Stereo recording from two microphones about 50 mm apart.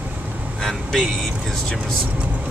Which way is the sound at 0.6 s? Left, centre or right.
Centre.